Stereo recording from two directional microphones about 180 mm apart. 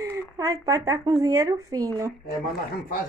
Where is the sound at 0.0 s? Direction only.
15° right (ahead or behind).